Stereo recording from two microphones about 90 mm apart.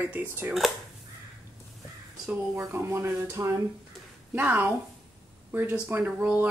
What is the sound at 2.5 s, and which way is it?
Speech, 30° right (ahead or behind).